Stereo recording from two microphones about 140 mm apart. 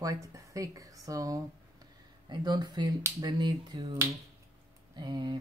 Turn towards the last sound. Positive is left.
turn(degrees=-30)  # may be behind; listen again after turning